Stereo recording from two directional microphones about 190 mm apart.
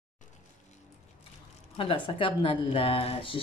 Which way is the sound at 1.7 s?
30° left (ahead or behind).